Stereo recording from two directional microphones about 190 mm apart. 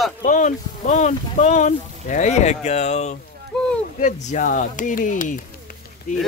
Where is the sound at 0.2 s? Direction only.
40° left (ahead or behind).